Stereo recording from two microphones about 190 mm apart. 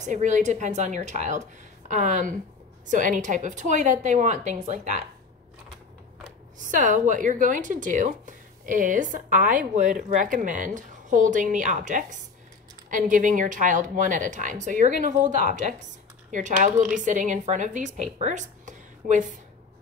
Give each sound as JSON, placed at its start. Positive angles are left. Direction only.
{"t": 0.0, "sound": "a woman's voice", "side_deg": -40}
{"t": 6.6, "sound": "a woman's voice", "side_deg": -45}